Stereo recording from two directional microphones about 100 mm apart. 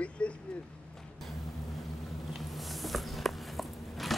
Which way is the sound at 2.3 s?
Centre (ahead or behind).